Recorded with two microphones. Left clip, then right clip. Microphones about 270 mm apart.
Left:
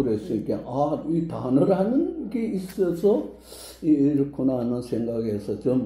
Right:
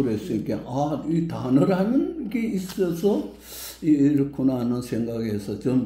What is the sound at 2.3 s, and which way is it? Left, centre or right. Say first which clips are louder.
A man's voice: right 1 dB; right.